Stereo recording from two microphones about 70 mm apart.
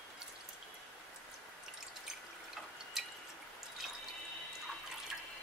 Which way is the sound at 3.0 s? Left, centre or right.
Centre.